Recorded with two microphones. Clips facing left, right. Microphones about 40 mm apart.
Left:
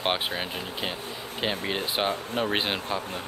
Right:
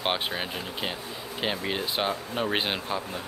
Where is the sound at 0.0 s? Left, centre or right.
Centre.